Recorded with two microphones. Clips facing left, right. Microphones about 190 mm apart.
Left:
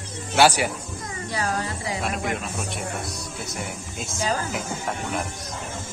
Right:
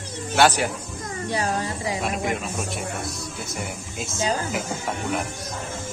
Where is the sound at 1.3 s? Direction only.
20° right (ahead or behind).